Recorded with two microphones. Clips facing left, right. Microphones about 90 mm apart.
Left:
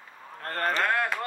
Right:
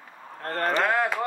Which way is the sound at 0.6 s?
Centre (ahead or behind).